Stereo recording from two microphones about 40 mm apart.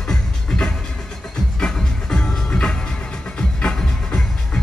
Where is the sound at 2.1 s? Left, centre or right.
Left.